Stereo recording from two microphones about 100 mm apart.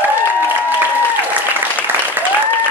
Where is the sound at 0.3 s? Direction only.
20° right (ahead or behind).